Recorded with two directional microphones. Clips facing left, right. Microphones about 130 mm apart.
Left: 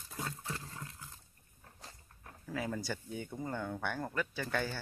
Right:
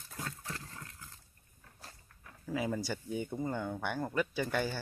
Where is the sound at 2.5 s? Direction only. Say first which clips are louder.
Right 3 dB; 10° right (ahead or behind).